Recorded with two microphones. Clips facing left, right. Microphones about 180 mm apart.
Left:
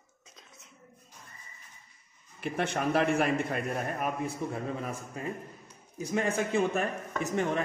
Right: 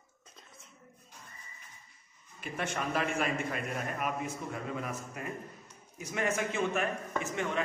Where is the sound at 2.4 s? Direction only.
60° left (ahead or behind).